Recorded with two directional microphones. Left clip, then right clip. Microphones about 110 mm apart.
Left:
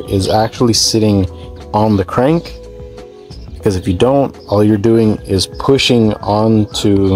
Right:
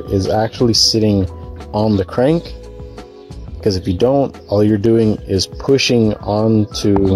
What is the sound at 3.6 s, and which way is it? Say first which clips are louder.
Speech: left 2 dB; 10° right (ahead or behind).